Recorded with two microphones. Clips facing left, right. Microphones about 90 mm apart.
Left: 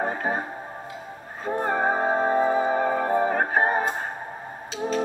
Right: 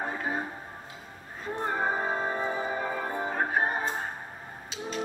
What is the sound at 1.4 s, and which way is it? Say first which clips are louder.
Music: left 6 dB; 50° left (ahead or behind).